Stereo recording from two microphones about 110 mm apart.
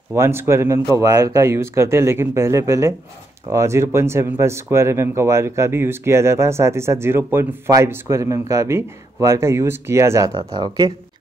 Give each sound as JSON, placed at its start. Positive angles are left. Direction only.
{"t": 0.1, "sound": "speech", "side_deg": -20}